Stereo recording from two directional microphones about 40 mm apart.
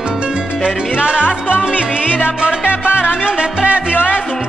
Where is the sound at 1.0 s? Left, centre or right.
Right.